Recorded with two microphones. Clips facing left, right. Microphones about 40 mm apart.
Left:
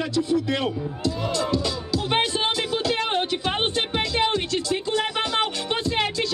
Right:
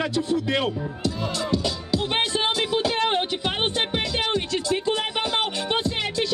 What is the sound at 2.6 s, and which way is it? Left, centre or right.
Music, right.